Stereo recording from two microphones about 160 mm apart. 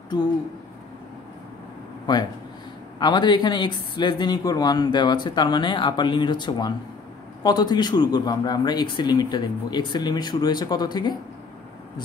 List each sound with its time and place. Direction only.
3.0 s speech: 25° left (ahead or behind)